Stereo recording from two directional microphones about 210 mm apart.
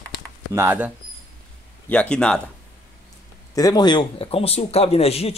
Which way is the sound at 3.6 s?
20° left (ahead or behind).